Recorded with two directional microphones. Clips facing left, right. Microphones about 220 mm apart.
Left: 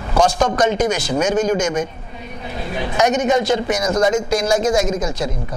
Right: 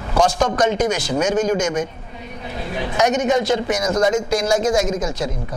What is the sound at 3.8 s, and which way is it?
Speech, 25° left (ahead or behind).